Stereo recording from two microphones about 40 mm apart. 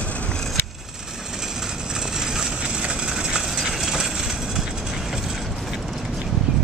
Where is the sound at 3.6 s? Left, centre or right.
Centre.